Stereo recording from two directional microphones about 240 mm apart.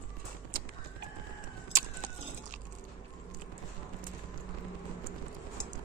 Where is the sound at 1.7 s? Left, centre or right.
Right.